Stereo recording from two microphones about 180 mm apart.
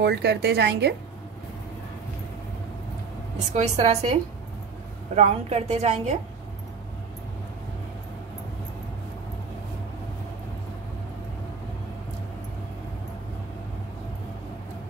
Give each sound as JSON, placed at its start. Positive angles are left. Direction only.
{"t": 0.0, "sound": "a woman's voice", "side_deg": -70}
{"t": 3.3, "sound": "a woman's voice", "side_deg": -40}
{"t": 5.1, "sound": "a woman's voice", "side_deg": -35}